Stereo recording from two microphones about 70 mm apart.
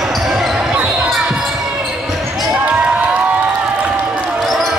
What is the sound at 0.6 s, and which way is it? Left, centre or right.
Basketball bounce, centre.